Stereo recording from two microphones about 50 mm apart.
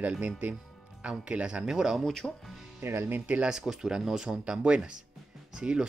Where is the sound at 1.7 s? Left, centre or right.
Centre.